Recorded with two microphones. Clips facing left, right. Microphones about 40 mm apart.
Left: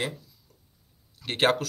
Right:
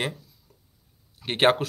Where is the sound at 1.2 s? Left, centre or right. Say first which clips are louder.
Right 3 dB; right.